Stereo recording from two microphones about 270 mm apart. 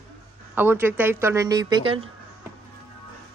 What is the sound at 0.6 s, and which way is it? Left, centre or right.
A woman's voice, centre.